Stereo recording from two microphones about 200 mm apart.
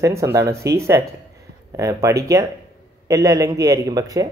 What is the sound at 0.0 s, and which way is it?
Speech, 15° right (ahead or behind).